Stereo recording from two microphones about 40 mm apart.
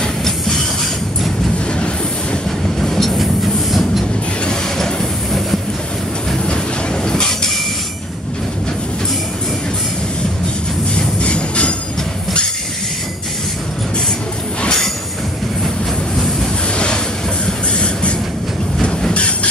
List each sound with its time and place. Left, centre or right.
2.8 s train: centre
4.7 s train: centre
6.4 s train: centre
11.2 s train: left
16.7 s train: left